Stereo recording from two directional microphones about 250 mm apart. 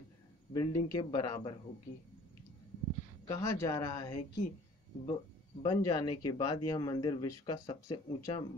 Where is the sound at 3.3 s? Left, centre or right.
Centre.